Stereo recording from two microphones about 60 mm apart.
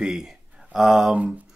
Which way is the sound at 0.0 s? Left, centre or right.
Centre.